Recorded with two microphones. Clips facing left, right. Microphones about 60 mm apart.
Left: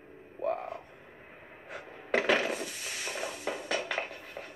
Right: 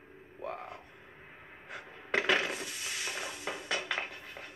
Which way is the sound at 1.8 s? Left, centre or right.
Centre.